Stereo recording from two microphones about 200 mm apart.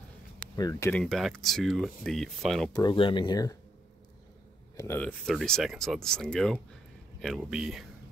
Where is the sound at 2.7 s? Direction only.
20° left (ahead or behind).